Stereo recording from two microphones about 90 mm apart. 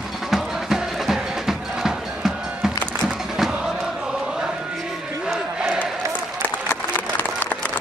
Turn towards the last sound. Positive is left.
turn(degrees=20)  # may be behind; listen again after turning